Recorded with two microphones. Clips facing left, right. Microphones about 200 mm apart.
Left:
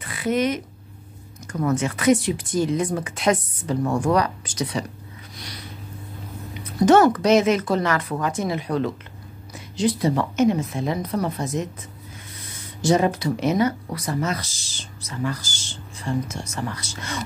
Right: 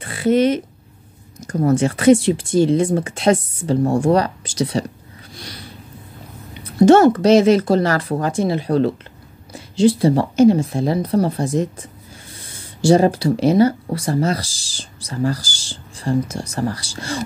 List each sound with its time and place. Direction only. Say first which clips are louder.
0.0 s speech: right 7 dB; 30° right (ahead or behind)
5.3 s a sound: right 4 dB; 30° right (ahead or behind)
6.6 s speech: right 5 dB; 25° right (ahead or behind)